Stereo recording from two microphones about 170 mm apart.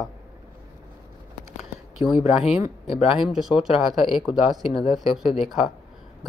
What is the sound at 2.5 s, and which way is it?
Speech, 35° left (ahead or behind).